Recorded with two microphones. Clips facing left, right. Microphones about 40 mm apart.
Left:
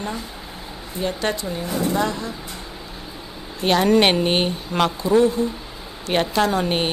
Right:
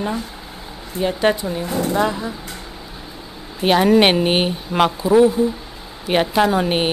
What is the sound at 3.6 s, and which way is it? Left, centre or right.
Speech, centre.